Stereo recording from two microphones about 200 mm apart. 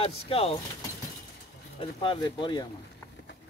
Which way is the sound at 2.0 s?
25° left (ahead or behind).